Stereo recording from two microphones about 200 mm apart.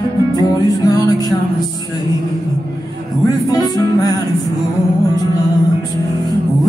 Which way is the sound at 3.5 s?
20° left (ahead or behind).